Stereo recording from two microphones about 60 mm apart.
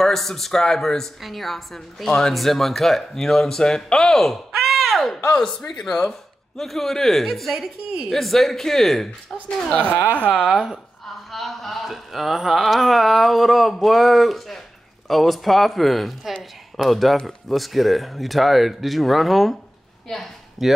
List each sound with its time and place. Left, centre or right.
0.0 s a woman's voice: centre
4.5 s a sound: centre
5.3 s a woman's voice: centre
9.7 s speech: centre
10.4 s a woman's voice: centre